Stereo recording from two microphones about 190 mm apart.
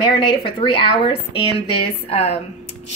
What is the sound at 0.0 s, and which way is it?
A woman's voice, 25° left (ahead or behind).